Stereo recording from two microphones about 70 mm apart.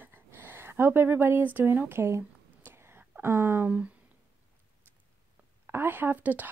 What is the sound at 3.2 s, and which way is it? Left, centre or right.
Speech, right.